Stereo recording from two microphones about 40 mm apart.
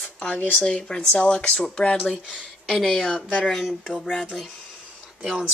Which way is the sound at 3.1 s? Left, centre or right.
Left.